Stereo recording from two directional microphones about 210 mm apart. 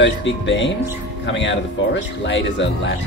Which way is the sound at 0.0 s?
60° left (ahead or behind).